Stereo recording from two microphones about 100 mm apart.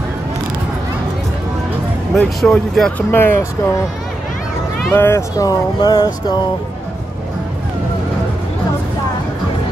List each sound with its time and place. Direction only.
2.1 s speech: 5° left (ahead or behind)
3.1 s speech: 20° left (ahead or behind)
4.9 s speech: 20° left (ahead or behind)
5.3 s speech: 35° left (ahead or behind)